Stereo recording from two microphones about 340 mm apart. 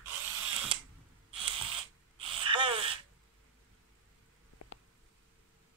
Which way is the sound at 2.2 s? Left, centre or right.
Centre.